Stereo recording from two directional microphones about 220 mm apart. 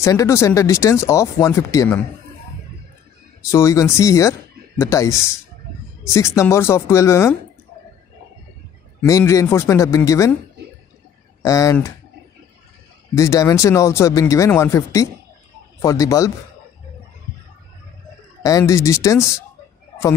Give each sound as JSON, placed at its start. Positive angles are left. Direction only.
{"t": 0.0, "sound": "speech", "side_deg": 15}
{"t": 3.5, "sound": "speech", "side_deg": 15}
{"t": 6.1, "sound": "speech", "side_deg": 15}
{"t": 9.0, "sound": "speech", "side_deg": 15}
{"t": 11.4, "sound": "speech", "side_deg": 15}
{"t": 13.1, "sound": "speech", "side_deg": 15}
{"t": 18.4, "sound": "speech", "side_deg": 15}